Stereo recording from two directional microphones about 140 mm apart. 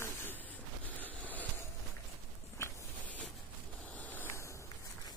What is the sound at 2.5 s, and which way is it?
Walk, 20° left (ahead or behind).